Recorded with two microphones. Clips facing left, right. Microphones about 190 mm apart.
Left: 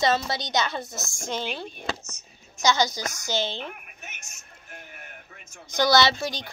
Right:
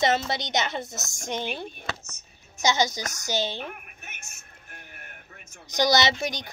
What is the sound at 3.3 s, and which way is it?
Speech, 15° right (ahead or behind).